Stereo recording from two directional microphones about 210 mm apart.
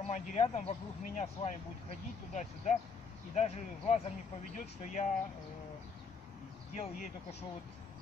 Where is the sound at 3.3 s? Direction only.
30° left (ahead or behind).